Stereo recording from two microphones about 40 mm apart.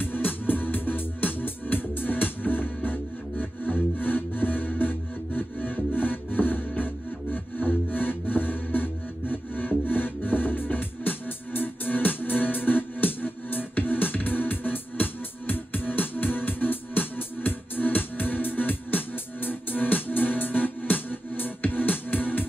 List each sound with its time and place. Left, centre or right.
0.0 s music: left